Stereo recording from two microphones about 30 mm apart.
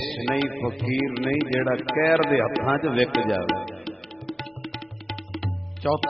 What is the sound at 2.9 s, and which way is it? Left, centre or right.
Tabla, centre.